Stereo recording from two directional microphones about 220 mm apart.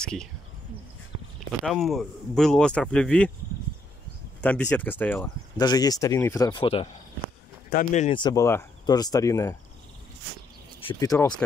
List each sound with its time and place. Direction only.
0.0 s speech: 5° left (ahead or behind)
1.7 s speech: centre (ahead or behind)
4.4 s speech: 5° left (ahead or behind); by 8.2 s 35° left (ahead or behind)
8.2 s speech: 15° left (ahead or behind)
10.8 s speech: 20° left (ahead or behind)